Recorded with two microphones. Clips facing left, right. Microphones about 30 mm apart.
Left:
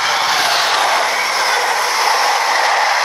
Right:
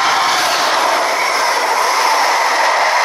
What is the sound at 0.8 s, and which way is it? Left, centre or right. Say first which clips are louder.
Train: right 1 dB; left.